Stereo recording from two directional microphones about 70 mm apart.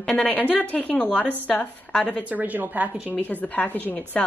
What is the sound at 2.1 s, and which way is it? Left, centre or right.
A woman's voice, right.